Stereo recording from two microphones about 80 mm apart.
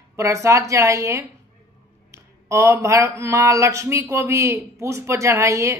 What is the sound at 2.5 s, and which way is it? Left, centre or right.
Speech, right.